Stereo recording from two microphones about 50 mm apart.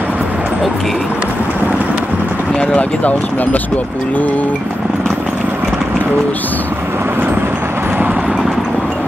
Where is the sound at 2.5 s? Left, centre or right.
Left.